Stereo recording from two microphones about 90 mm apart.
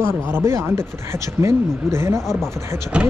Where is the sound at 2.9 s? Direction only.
10° right (ahead or behind).